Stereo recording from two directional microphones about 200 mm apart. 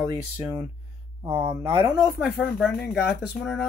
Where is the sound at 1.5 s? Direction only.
25° right (ahead or behind).